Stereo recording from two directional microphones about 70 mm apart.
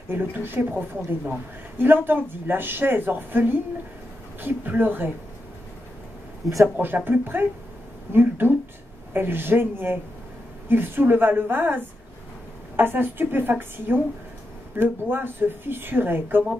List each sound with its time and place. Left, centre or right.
0.1 s a woman's voice: right
7.1 s a woman's voice: right